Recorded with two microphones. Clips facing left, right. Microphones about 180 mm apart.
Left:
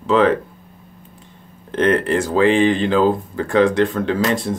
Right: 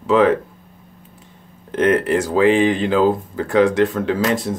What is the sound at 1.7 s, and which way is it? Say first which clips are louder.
Speech: right 1 dB; 10° right (ahead or behind).